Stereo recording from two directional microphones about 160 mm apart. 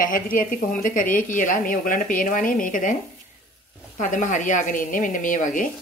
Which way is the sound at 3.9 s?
50° left (ahead or behind).